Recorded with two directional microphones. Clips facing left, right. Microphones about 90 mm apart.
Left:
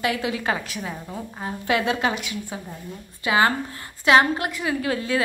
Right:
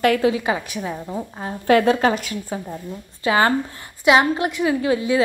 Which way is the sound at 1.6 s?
40° right (ahead or behind).